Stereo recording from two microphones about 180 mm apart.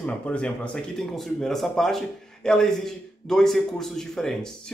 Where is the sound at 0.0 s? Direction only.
5° left (ahead or behind).